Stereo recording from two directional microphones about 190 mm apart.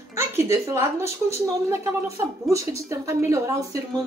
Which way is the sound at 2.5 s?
15° right (ahead or behind).